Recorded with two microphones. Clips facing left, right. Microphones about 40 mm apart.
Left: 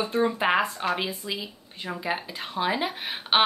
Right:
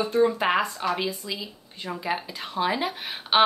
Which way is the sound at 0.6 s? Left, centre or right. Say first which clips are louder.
Right 1 dB; left.